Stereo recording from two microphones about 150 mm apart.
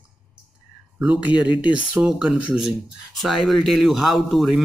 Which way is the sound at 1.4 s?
35° left (ahead or behind).